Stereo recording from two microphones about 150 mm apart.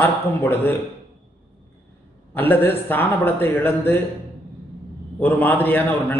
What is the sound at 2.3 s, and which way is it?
A man's voice, 15° left (ahead or behind).